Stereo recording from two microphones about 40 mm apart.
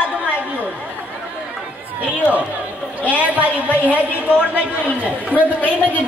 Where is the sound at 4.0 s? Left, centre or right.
Right.